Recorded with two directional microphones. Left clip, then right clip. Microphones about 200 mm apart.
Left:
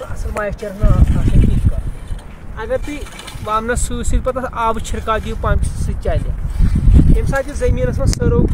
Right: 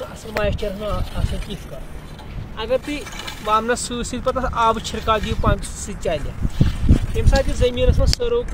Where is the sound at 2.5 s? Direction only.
10° left (ahead or behind).